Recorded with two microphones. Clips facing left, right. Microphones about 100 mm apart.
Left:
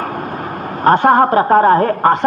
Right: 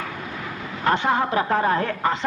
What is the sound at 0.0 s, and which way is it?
Speech, 45° left (ahead or behind).